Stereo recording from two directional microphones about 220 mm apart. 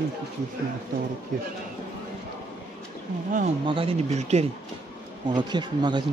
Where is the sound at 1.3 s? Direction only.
35° right (ahead or behind).